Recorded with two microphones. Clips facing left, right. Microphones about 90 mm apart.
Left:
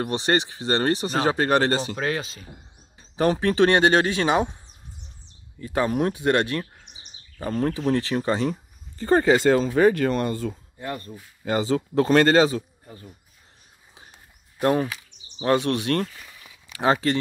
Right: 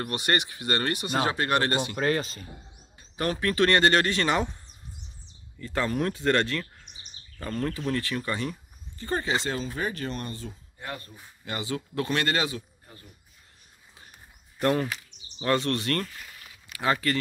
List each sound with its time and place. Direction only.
0.0 s speech: 25° left (ahead or behind)
2.0 s speech: centre (ahead or behind)
3.2 s speech: 25° left (ahead or behind)
5.7 s speech: 15° left (ahead or behind)
9.0 s speech: 40° left (ahead or behind)
9.7 s speech: 60° left (ahead or behind)
11.4 s speech: 35° left (ahead or behind)
14.6 s speech: 15° left (ahead or behind)